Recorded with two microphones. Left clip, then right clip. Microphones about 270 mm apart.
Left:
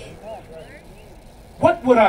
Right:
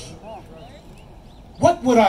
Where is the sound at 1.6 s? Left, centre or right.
Right.